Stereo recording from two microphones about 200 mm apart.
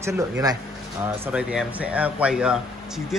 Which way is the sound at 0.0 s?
20° right (ahead or behind).